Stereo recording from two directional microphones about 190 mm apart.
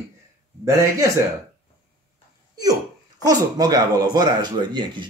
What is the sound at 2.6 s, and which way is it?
Speech, 20° right (ahead or behind).